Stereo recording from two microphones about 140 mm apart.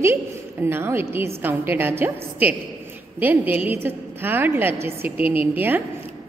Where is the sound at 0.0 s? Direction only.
15° right (ahead or behind).